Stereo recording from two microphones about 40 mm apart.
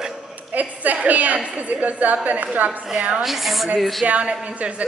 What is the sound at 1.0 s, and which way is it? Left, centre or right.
A woman's voice, right.